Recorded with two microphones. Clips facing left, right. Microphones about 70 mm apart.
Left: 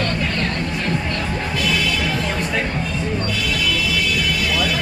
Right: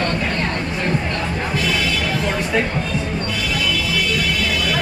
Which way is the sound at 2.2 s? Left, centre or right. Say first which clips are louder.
Right 2 dB; centre.